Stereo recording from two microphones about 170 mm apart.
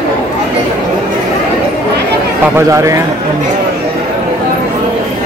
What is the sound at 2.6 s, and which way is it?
Speech, 15° right (ahead or behind).